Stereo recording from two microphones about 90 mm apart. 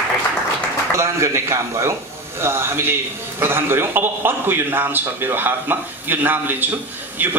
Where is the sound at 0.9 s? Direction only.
30° right (ahead or behind).